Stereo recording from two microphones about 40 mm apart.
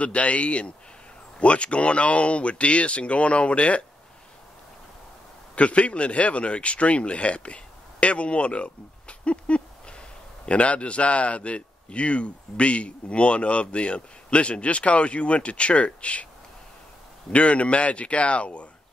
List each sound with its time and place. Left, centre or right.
0.0 s speech: left
5.6 s speech: left
17.3 s speech: left